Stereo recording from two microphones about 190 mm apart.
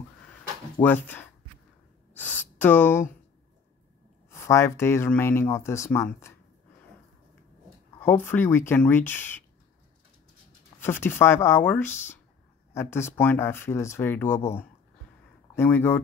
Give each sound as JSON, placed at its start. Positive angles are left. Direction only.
{"t": 0.8, "sound": "speech", "side_deg": 25}
{"t": 2.1, "sound": "a sound", "side_deg": 10}
{"t": 4.3, "sound": "speech", "side_deg": 15}
{"t": 8.0, "sound": "speech", "side_deg": 10}
{"t": 10.8, "sound": "speech", "side_deg": 10}